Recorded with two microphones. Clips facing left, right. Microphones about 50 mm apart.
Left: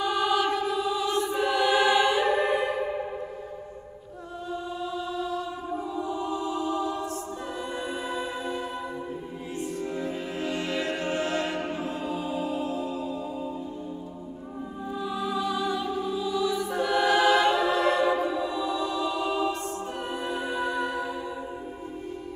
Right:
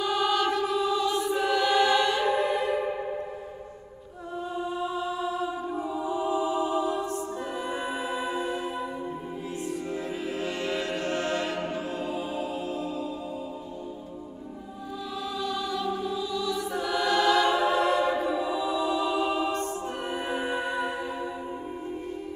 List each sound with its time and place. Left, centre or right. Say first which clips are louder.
0.0 s music: even; centre
1.2 s choir: even; centre
2.4 s music: left 1 dB; left
4.6 s music: right 3 dB; centre
9.7 s music: left 1 dB; centre
11.0 s music: left 1 dB; centre
12.0 s music: left 1 dB; centre
15.1 s music: left 3 dB; centre
17.5 s choir: even; centre
18.2 s music: even; centre